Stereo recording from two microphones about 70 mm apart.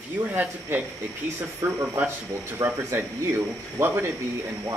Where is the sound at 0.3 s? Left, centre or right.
Right.